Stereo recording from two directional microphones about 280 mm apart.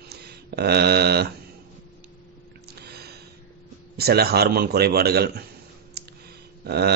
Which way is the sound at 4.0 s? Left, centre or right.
Right.